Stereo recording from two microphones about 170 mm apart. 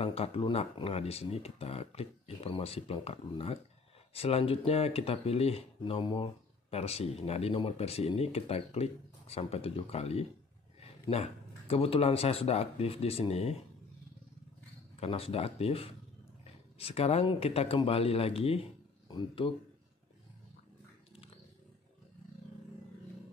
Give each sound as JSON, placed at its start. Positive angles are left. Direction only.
{"t": 0.0, "sound": "speech", "side_deg": 35}
{"t": 15.0, "sound": "speech", "side_deg": 35}